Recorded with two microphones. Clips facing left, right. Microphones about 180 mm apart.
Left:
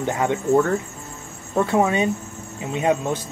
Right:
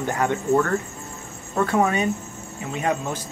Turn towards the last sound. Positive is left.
turn(degrees=25)  # may be behind; listen again after turning